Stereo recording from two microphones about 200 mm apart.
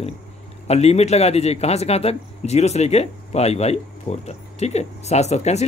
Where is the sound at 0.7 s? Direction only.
30° left (ahead or behind).